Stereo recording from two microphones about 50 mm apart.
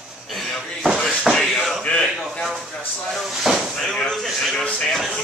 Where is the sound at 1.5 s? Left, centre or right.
Centre.